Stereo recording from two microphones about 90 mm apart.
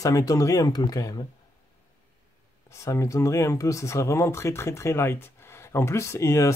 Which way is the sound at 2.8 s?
35° left (ahead or behind).